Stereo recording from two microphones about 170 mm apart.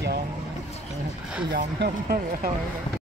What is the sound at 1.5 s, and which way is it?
Speech, 80° right.